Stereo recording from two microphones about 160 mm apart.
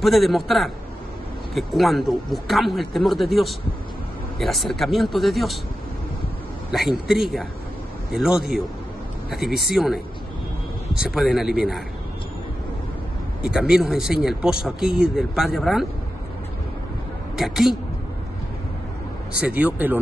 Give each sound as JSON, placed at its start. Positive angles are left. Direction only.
{"t": 0.0, "sound": "speech", "side_deg": 0}
{"t": 6.7, "sound": "speech", "side_deg": 0}
{"t": 11.0, "sound": "speech", "side_deg": 0}
{"t": 13.4, "sound": "speech", "side_deg": -5}
{"t": 17.4, "sound": "speech", "side_deg": 0}
{"t": 19.4, "sound": "speech", "side_deg": -10}